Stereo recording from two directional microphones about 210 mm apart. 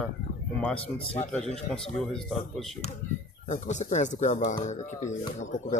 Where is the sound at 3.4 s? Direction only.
35° left (ahead or behind).